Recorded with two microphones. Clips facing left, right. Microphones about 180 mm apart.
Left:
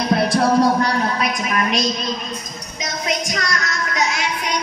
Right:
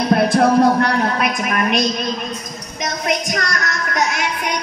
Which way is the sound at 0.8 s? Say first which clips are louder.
Right 2 dB; 55° right (ahead or behind).